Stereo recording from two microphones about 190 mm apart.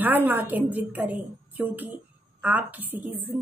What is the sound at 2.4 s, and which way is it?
Speech, 10° right (ahead or behind).